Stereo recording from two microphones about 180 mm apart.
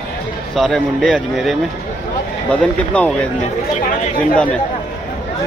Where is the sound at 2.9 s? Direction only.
5° left (ahead or behind).